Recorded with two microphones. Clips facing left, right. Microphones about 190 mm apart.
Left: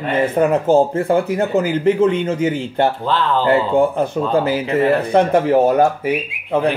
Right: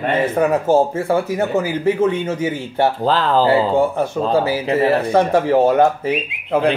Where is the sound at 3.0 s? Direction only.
40° right (ahead or behind).